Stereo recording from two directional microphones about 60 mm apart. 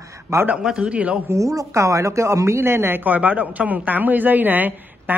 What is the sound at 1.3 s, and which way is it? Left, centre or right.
Speech, right.